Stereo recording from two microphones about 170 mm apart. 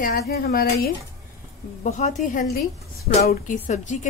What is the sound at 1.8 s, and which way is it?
Speech, 45° left (ahead or behind).